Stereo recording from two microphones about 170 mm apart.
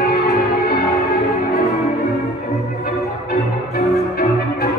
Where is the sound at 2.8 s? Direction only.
65° left (ahead or behind).